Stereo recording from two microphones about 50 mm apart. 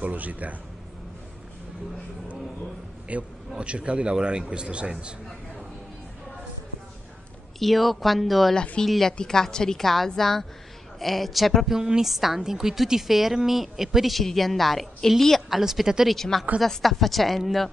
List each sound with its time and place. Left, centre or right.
0.0 s speech: right
3.1 s speech: right
7.5 s a woman's voice: centre
9.1 s a woman's voice: centre
11.7 s a woman's voice: centre
15.6 s speech: centre
16.2 s a woman's voice: centre